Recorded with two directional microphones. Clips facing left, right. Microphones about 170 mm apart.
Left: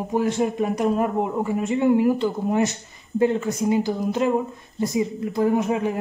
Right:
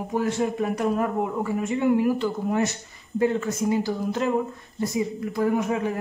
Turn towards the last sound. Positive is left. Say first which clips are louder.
# left 2 dB
turn(degrees=20)  # may be behind; listen again after turning